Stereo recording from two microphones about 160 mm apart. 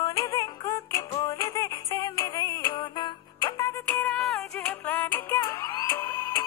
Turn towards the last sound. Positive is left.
turn(degrees=15)  # may be behind; listen again after turning